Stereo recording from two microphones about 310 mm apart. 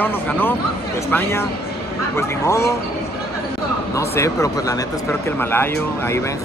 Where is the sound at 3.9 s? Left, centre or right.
Centre.